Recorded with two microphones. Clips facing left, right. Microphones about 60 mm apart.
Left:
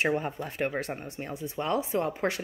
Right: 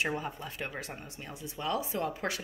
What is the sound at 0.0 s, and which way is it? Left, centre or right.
Speech, left.